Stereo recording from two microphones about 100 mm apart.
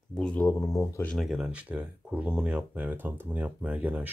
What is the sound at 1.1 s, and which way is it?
Speech, centre (ahead or behind).